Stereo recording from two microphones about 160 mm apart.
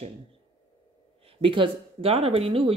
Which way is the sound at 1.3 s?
35° right (ahead or behind).